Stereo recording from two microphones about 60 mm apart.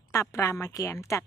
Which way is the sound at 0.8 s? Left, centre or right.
Left.